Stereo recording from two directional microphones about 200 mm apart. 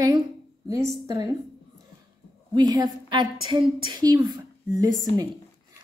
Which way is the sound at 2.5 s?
20° right (ahead or behind).